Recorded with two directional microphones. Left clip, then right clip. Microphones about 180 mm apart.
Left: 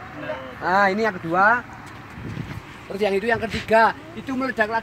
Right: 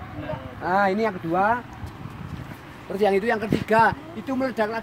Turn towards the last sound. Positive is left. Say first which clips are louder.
# left 2 dB
turn(degrees=-50)  # may be behind; listen again after turning